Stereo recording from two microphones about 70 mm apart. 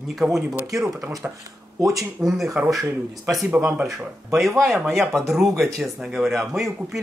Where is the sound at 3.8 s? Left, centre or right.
Centre.